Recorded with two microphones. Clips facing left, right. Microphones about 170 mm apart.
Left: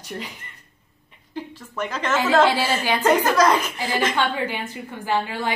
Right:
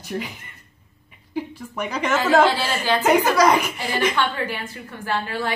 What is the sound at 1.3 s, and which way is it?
Speech, 10° right (ahead or behind).